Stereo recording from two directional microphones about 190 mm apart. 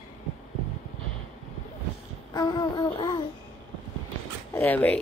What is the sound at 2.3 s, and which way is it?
Music, 20° left (ahead or behind).